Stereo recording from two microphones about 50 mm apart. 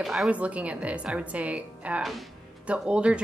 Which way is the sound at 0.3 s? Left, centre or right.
Right.